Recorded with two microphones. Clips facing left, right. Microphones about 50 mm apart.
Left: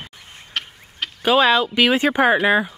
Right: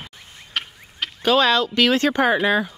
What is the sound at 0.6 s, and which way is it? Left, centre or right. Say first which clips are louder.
Fowl: even; centre.